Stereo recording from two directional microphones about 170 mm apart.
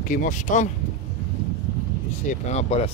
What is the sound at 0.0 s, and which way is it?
Speech, 50° left (ahead or behind).